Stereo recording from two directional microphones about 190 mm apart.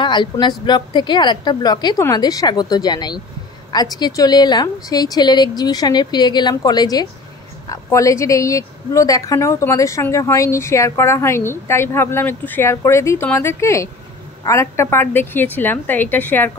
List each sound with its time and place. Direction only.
0.0 s a woman's voice: 25° left (ahead or behind)